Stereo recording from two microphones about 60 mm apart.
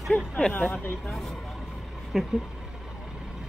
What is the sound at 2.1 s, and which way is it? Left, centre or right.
Speech, centre.